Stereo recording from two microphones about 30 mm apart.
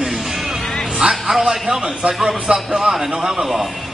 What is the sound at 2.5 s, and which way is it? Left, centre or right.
Speech, centre.